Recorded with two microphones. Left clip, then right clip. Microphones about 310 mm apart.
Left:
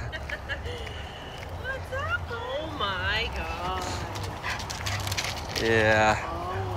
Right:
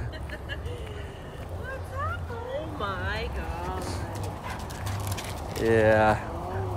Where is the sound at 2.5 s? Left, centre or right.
Centre.